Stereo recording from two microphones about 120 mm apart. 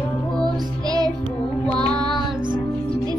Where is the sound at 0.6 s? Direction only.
35° right (ahead or behind).